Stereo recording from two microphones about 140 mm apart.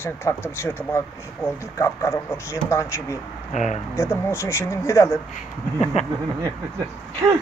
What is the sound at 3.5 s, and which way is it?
Speech, 60° left (ahead or behind).